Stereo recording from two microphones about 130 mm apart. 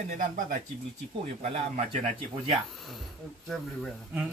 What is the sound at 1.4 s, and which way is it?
Speech, 55° right (ahead or behind).